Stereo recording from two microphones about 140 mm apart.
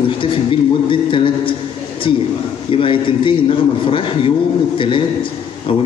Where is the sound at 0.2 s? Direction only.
40° left (ahead or behind).